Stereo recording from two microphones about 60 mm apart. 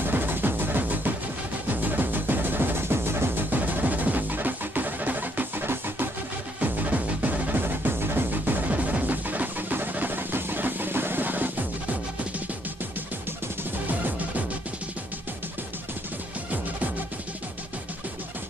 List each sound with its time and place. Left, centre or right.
0.0 s music: right
3.4 s music: right